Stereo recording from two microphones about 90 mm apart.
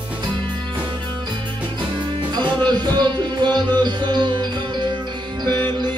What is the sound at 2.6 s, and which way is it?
Music, 55° right (ahead or behind).